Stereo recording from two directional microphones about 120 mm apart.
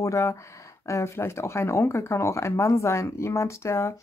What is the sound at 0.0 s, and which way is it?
Speech, 25° left (ahead or behind).